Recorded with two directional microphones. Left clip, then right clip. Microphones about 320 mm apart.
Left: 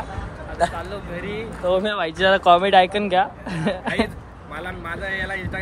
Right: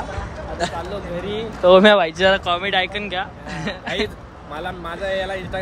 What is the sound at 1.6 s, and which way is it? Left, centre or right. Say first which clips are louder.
Speech: right 9 dB; right.